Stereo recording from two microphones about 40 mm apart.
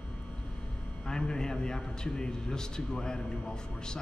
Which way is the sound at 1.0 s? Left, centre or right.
Centre.